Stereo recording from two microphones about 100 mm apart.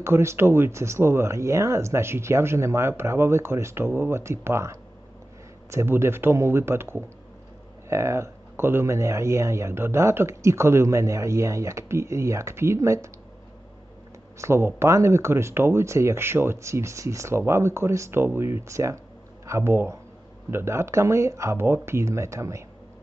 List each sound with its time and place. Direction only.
0.0 s speech: 25° right (ahead or behind)
14.4 s speech: 25° right (ahead or behind)